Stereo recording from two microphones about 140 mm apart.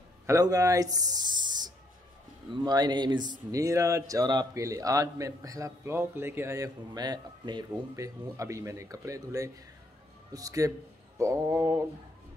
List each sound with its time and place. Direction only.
0.3 s speech: 25° right (ahead or behind)